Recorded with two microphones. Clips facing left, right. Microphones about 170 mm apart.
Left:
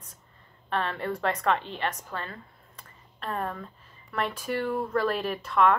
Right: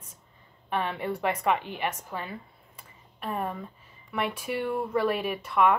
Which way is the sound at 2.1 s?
10° right (ahead or behind).